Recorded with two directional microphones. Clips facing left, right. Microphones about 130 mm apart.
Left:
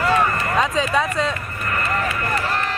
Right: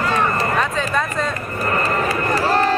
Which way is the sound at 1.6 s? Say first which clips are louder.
Right 4 dB; 35° right (ahead or behind).